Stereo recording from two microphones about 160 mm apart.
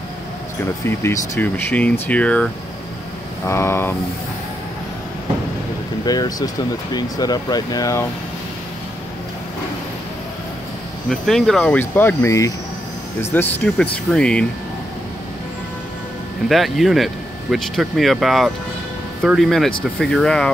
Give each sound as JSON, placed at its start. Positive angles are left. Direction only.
{"t": 0.8, "sound": "speech", "side_deg": 15}
{"t": 6.0, "sound": "speech", "side_deg": 25}
{"t": 11.1, "sound": "speech", "side_deg": 0}
{"t": 16.4, "sound": "speech", "side_deg": 0}